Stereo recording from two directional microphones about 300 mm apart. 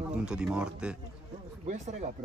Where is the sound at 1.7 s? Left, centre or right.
Right.